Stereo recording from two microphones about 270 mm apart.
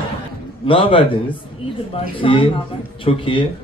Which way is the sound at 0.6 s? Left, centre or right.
Centre.